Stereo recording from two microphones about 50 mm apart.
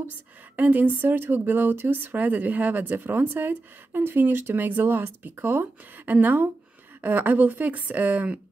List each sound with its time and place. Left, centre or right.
0.6 s speech: right